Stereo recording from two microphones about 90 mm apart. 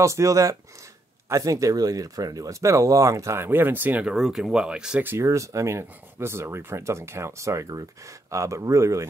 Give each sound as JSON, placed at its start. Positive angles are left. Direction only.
{"t": 0.0, "sound": "speech", "side_deg": -35}
{"t": 4.0, "sound": "speech", "side_deg": -5}
{"t": 5.0, "sound": "speech", "side_deg": -30}